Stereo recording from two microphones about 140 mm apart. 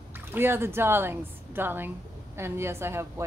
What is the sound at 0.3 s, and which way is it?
A woman's voice, 15° right (ahead or behind).